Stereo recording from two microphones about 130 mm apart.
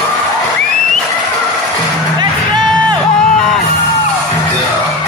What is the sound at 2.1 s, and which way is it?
Music, 35° right (ahead or behind).